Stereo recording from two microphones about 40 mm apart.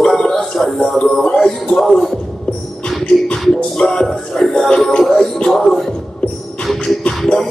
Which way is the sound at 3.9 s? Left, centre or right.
Centre.